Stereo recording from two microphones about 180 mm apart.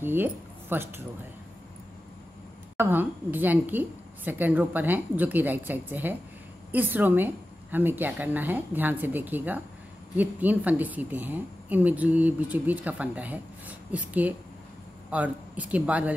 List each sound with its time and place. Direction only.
0.0 s speech: 10° right (ahead or behind)
2.8 s a woman's voice: 10° right (ahead or behind)